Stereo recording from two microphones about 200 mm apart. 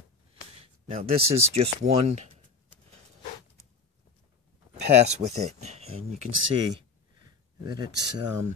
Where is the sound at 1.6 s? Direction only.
35° right (ahead or behind).